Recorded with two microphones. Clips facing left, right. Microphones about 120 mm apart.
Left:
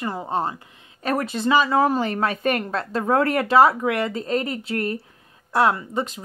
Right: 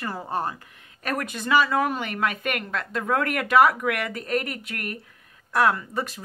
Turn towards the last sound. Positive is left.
turn(degrees=20)  # may be behind; listen again after turning